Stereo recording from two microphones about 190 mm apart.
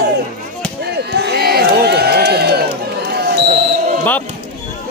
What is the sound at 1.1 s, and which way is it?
Crowd, 60° right (ahead or behind).